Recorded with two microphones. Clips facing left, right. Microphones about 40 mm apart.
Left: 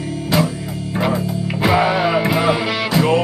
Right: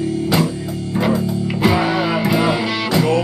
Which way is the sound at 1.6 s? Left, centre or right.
Centre.